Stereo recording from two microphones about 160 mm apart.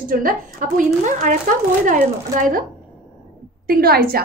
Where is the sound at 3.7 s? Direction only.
70° right (ahead or behind).